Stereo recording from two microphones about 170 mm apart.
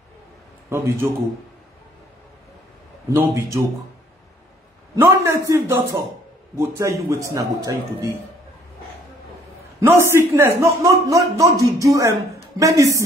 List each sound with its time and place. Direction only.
0.7 s a man's voice: 15° right (ahead or behind)
3.1 s a man's voice: 15° right (ahead or behind)
4.9 s a man's voice: 15° right (ahead or behind)
9.8 s a man's voice: 15° right (ahead or behind)